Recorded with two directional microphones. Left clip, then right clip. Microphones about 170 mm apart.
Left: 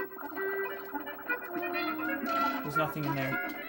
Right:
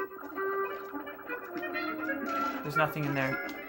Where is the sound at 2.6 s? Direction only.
10° left (ahead or behind).